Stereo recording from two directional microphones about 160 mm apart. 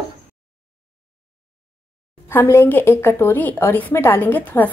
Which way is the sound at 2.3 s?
15° left (ahead or behind).